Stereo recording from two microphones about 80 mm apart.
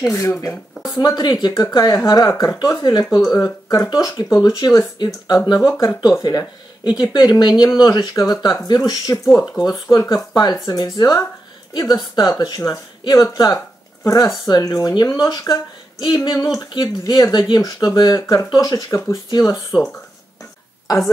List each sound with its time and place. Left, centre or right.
0.0 s speech: left
0.9 s speech: left
2.0 s speech: left
15.5 s a sound: left
16.8 s speech: left
18.2 s speech: left
20.9 s speech: left